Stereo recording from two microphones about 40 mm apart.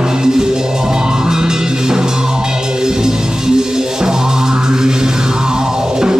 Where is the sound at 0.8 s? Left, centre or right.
Right.